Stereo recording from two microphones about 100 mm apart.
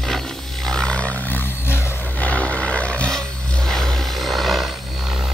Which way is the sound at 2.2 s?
15° left (ahead or behind).